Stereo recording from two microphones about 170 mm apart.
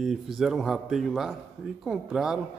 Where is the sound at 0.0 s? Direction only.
Centre (ahead or behind).